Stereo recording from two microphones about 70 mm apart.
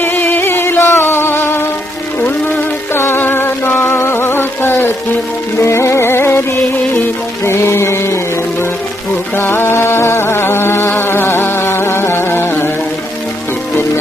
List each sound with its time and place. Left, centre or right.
0.0 s music: left
2.9 s music: left
5.6 s music: left
9.4 s music: left